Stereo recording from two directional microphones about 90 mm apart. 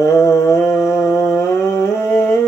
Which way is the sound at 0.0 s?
30° left (ahead or behind).